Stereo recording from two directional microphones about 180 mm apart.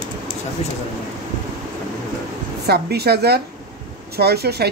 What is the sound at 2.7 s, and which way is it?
Speech, 65° right (ahead or behind).